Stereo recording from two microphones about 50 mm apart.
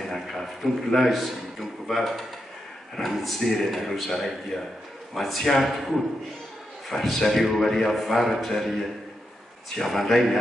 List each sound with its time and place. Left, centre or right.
0.0 s a man's voice: centre
9.8 s a man's voice: centre